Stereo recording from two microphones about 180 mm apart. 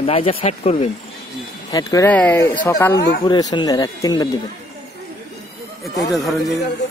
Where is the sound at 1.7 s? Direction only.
20° left (ahead or behind).